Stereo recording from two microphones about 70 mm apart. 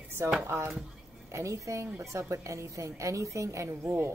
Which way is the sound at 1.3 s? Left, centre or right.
Right.